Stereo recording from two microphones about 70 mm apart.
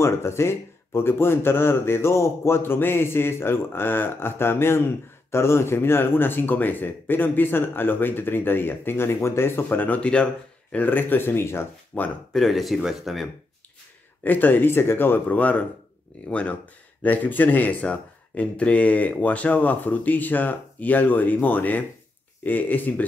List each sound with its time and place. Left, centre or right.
0.0 s a man's voice: left
11.9 s speech: left
12.3 s speech: centre
14.2 s speech: left